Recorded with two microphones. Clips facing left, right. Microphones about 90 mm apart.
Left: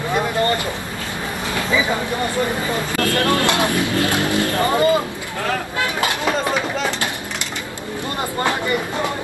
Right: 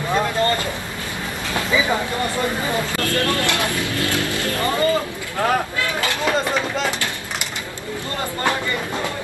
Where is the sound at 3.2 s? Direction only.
20° left (ahead or behind).